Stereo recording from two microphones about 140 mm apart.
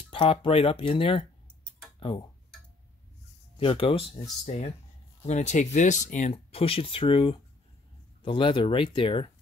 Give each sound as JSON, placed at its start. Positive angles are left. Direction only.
{"t": 0.1, "sound": "speech", "side_deg": 35}
{"t": 2.0, "sound": "tick-tock", "side_deg": 35}
{"t": 3.5, "sound": "speech", "side_deg": 40}